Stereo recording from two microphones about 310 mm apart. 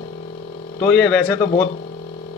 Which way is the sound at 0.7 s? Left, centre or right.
Centre.